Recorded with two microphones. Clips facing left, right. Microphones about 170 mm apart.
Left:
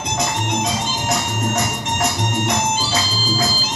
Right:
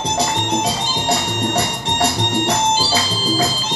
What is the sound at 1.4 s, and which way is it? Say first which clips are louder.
Music: right 1 dB; 30° right (ahead or behind).